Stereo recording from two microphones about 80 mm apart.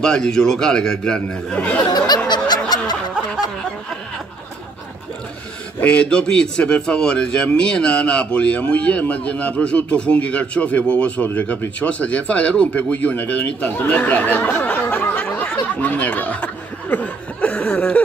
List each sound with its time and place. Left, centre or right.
0.0 s a man's voice: centre
1.9 s snicker: left
5.8 s a man's voice: centre
16.9 s a sound: centre